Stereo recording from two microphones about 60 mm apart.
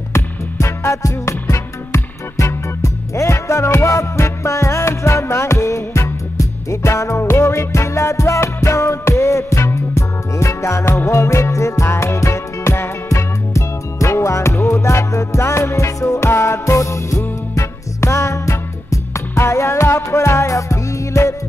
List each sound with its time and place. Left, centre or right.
0.1 s music: left
13.1 s music: left